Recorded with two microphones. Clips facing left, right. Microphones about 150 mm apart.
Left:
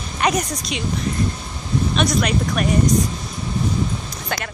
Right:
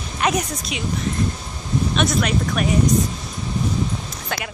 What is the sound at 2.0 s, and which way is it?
Speech, centre (ahead or behind).